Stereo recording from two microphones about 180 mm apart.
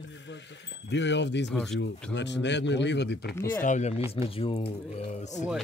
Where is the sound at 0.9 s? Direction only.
80° left.